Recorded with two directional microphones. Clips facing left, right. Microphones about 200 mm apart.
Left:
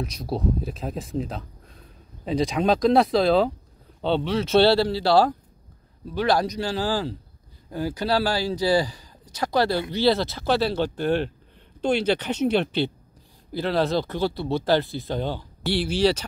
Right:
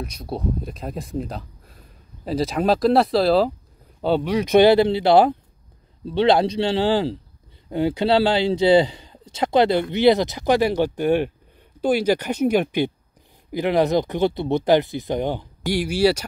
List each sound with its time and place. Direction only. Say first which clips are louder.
0.0 s speech: left 1 dB; centre (ahead or behind)